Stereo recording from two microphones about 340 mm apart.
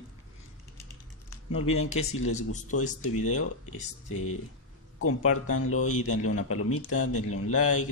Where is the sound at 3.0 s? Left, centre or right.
Left.